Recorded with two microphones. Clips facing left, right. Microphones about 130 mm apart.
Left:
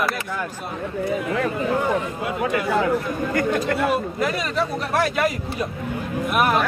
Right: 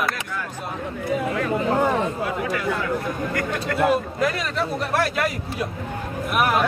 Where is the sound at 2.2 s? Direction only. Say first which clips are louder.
Left 2 dB; 25° left (ahead or behind).